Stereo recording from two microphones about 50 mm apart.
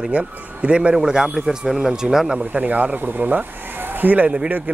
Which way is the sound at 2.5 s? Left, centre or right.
Right.